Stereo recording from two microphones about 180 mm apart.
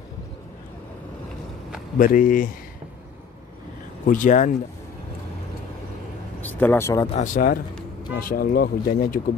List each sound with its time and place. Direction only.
2.0 s speech: 50° left (ahead or behind)
4.0 s speech: 45° left (ahead or behind)
6.4 s speech: 10° left (ahead or behind)
7.3 s speech: 50° left (ahead or behind)